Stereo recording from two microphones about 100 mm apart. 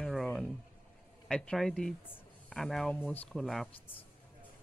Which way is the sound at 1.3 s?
5° left (ahead or behind).